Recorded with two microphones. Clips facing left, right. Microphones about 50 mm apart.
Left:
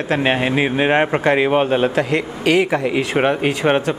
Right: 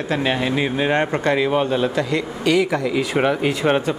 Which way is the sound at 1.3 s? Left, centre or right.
Left.